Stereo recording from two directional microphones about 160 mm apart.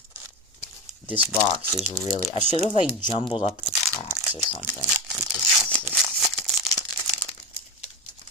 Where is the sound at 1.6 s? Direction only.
10° right (ahead or behind).